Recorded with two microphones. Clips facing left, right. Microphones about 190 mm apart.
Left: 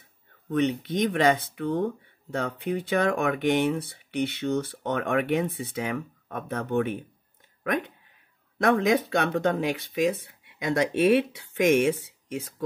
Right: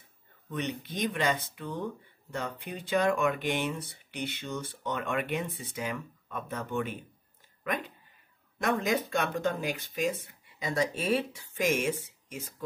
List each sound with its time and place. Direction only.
0.5 s speech: 60° left (ahead or behind)
8.6 s speech: 65° left (ahead or behind)